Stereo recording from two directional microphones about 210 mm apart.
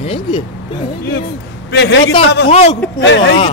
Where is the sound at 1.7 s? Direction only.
55° left (ahead or behind).